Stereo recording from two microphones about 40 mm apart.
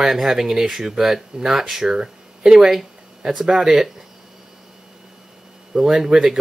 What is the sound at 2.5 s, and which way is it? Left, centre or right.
Speech, centre.